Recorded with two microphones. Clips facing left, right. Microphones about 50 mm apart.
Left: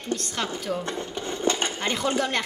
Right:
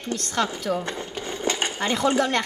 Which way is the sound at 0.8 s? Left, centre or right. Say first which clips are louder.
Even; right.